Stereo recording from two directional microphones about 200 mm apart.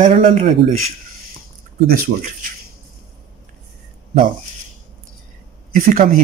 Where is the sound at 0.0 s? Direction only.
35° right (ahead or behind).